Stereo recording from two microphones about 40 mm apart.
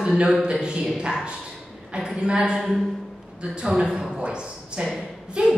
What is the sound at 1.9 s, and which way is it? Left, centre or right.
Speech, right.